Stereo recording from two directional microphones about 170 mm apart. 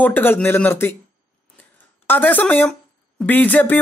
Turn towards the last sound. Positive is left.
turn(degrees=10)  # may be behind; listen again after turning